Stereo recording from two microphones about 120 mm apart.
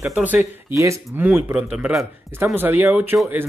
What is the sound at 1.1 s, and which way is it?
Speech, 15° right (ahead or behind).